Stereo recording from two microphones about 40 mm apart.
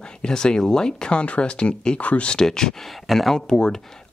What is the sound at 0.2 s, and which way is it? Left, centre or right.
Speech, centre.